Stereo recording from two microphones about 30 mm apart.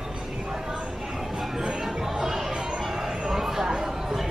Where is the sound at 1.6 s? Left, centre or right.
Centre.